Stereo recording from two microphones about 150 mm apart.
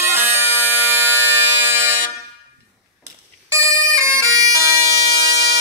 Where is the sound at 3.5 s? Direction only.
20° right (ahead or behind).